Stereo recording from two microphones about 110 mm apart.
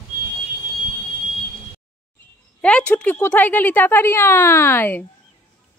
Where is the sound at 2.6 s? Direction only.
10° left (ahead or behind).